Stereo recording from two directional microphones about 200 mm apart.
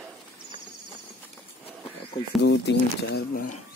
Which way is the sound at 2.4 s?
60° left (ahead or behind).